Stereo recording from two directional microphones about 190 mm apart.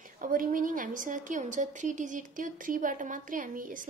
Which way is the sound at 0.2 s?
45° right (ahead or behind).